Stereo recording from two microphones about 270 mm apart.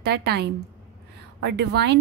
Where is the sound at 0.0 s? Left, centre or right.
Right.